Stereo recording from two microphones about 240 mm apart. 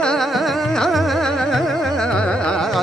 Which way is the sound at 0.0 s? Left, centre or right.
Centre.